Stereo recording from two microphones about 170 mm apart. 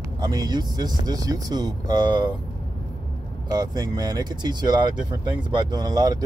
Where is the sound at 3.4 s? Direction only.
25° right (ahead or behind).